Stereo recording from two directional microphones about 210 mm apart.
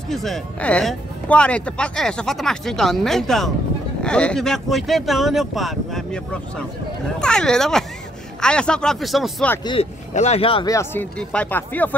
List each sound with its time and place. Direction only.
0.1 s speech: centre (ahead or behind)
9.7 s speech: 30° left (ahead or behind); by 11.9 s 10° left (ahead or behind)